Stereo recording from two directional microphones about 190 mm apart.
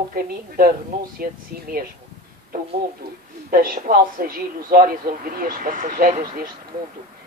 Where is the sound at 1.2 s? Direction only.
50° right (ahead or behind).